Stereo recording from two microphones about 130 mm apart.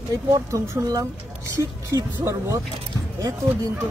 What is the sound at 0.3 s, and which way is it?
Speech, 25° right (ahead or behind).